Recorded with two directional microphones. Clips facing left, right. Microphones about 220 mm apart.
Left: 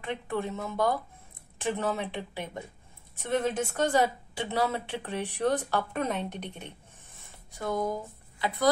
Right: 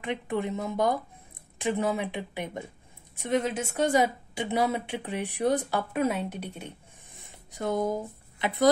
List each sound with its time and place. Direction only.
0.0 s a woman's voice: 15° right (ahead or behind)
7.2 s speech: 20° right (ahead or behind)